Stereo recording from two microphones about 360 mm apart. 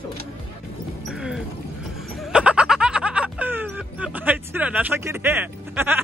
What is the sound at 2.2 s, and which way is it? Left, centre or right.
Music, centre.